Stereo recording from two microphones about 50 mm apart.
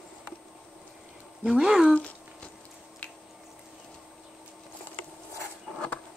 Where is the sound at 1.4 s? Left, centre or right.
Centre.